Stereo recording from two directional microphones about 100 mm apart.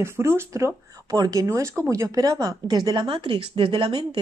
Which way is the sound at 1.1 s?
40° right (ahead or behind).